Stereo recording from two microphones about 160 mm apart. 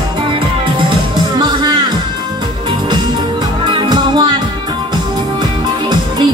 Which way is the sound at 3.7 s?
25° right (ahead or behind).